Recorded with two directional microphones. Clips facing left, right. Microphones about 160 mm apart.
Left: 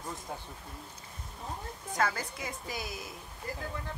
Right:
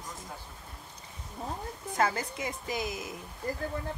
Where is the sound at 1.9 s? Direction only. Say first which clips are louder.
Right 3 dB; 25° right (ahead or behind).